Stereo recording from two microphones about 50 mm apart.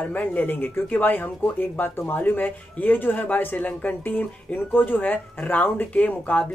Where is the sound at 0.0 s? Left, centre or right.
Left.